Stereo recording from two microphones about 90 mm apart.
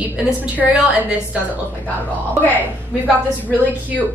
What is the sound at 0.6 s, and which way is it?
Speech, 15° right (ahead or behind).